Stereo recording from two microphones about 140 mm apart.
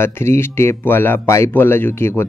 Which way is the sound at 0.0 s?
20° left (ahead or behind).